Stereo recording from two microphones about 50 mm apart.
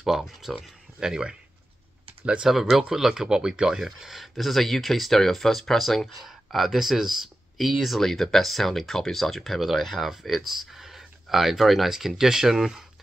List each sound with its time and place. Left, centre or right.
0.0 s speech: centre
2.5 s speech: centre